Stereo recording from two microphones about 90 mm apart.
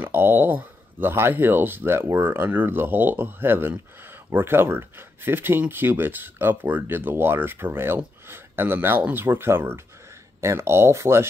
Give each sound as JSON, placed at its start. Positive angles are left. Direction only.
{"t": 0.0, "sound": "speech", "side_deg": -25}